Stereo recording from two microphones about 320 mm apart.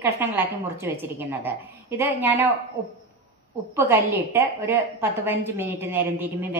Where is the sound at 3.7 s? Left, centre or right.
Centre.